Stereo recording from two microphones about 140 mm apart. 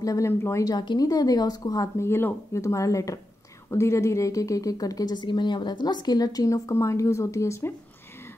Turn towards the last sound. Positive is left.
turn(degrees=20)  # may be behind; listen again after turning